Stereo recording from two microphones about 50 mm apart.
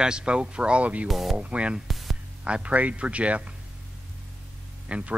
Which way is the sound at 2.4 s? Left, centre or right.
Right.